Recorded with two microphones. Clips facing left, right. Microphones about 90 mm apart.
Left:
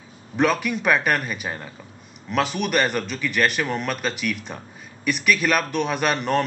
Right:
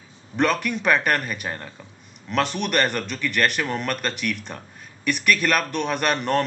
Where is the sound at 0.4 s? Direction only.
Centre (ahead or behind).